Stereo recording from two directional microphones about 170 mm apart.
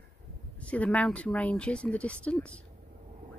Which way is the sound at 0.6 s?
5° left (ahead or behind).